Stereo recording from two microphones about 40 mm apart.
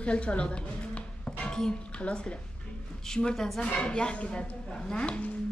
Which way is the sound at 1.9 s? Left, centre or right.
Left.